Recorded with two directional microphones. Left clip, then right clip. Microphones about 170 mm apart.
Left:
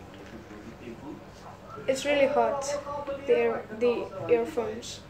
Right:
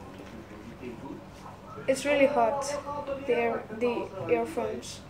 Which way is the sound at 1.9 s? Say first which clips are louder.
Even; centre (ahead or behind).